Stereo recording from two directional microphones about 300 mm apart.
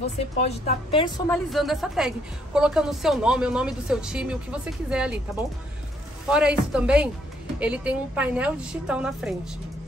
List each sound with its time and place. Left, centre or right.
0.4 s a woman's voice: left
1.3 s a woman's voice: centre
6.2 s a woman's voice: centre